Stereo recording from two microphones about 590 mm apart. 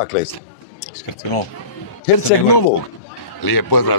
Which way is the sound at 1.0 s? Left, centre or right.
Left.